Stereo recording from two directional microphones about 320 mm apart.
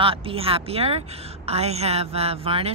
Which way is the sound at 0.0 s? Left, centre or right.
Centre.